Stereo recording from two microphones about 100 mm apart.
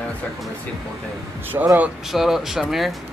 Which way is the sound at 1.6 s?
30° right (ahead or behind).